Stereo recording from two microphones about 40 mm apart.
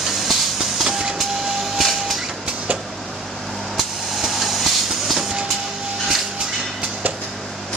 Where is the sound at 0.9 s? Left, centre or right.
Centre.